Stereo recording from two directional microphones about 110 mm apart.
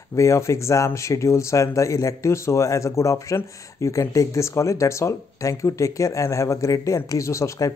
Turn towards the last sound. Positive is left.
turn(degrees=25)  # may be behind; listen again after turning